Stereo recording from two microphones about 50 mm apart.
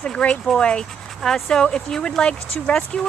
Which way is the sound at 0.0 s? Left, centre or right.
Left.